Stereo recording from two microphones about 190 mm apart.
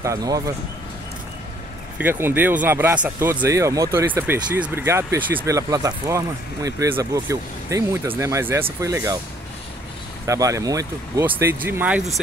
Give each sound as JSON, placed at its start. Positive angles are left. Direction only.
{"t": 0.0, "sound": "speech", "side_deg": -15}
{"t": 2.0, "sound": "speech", "side_deg": -10}
{"t": 10.2, "sound": "speech", "side_deg": -15}